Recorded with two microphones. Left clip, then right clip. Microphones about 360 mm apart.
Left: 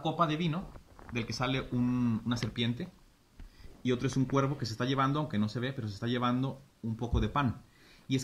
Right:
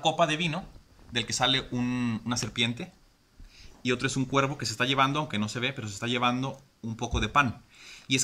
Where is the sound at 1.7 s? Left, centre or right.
Right.